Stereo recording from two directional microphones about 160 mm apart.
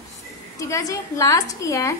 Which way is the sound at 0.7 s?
20° left (ahead or behind).